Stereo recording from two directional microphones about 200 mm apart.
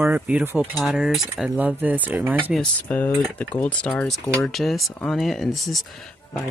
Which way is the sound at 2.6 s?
5° left (ahead or behind).